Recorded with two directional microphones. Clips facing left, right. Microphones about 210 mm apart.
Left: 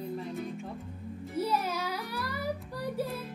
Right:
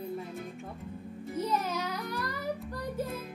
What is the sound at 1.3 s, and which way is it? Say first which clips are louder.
Music: left 1 dB; 10° left (ahead or behind).